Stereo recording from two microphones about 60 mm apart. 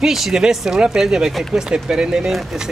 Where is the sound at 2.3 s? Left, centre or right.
Centre.